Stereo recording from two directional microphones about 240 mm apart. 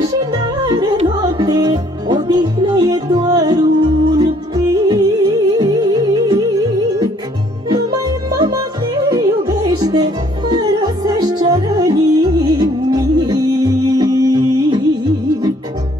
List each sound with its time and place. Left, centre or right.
0.0 s music: centre
7.7 s music: centre